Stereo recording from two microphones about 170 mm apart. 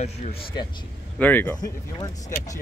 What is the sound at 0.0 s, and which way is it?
Speech, 40° left (ahead or behind).